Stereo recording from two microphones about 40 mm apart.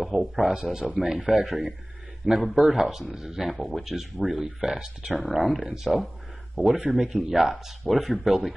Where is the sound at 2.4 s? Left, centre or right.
Centre.